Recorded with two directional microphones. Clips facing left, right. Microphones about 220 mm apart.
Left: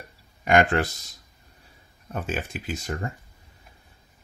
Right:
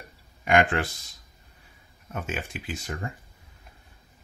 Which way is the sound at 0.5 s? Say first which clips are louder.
Left 2 dB; 40° left (ahead or behind).